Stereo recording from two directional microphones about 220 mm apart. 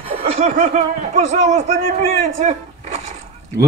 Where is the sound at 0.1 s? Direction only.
30° right (ahead or behind).